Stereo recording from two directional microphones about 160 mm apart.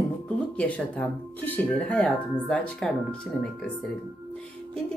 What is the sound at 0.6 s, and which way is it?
A woman's voice, 10° left (ahead or behind).